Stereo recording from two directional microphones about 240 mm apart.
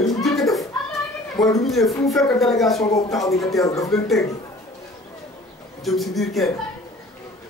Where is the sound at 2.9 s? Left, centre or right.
Centre.